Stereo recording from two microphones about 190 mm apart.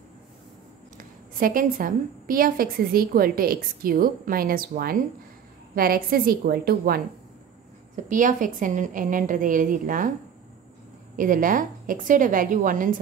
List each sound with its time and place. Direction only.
0.9 s a woman's voice: 50° right (ahead or behind)
7.9 s a woman's voice: 40° right (ahead or behind)
11.1 s a woman's voice: 45° right (ahead or behind)